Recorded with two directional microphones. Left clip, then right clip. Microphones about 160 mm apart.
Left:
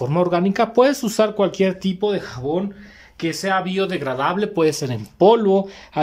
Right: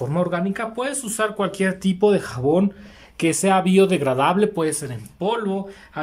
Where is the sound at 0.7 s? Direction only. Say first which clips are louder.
Left 10 dB; 35° left (ahead or behind).